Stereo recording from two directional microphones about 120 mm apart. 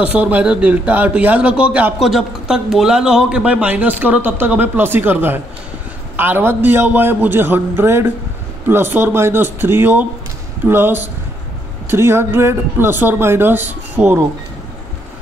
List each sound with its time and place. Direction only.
0.0 s speech: 10° right (ahead or behind)